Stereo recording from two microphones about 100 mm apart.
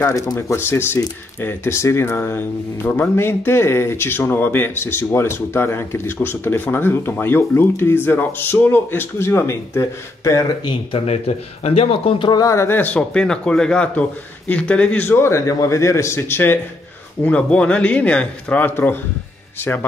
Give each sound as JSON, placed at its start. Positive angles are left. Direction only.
{"t": 0.1, "sound": "speech", "side_deg": 30}
{"t": 10.6, "sound": "speech", "side_deg": 50}
{"t": 11.1, "sound": "speech", "side_deg": 90}
{"t": 12.4, "sound": "speech", "side_deg": 30}
{"t": 17.2, "sound": "speech", "side_deg": 10}